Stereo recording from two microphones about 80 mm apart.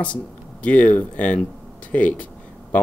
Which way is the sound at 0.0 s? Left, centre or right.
Centre.